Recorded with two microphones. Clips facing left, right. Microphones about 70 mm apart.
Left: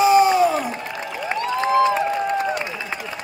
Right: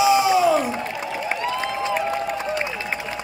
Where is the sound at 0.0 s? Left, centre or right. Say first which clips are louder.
Left 2 dB; left.